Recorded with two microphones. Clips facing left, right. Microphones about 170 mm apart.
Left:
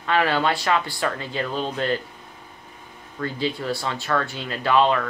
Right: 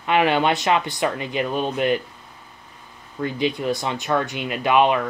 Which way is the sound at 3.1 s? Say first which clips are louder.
Right 3 dB; 20° right (ahead or behind).